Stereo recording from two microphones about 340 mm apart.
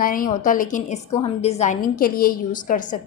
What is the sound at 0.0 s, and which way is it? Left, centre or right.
A woman's voice, left.